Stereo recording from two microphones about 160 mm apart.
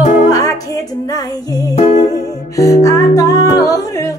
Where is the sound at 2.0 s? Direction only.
20° left (ahead or behind).